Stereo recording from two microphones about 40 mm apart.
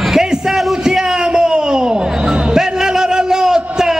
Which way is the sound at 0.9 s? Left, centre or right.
Centre.